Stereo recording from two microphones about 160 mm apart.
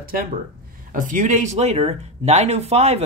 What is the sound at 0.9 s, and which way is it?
A man's voice, 55° right (ahead or behind).